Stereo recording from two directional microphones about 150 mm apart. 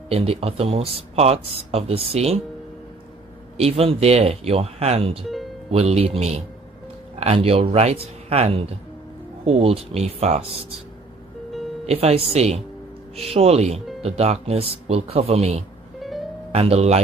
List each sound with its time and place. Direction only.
0.1 s speech: 40° right (ahead or behind)
3.5 s speech: 40° right (ahead or behind)
11.8 s speech: 45° right (ahead or behind)
16.0 s music: centre (ahead or behind)
16.5 s speech: 45° right (ahead or behind)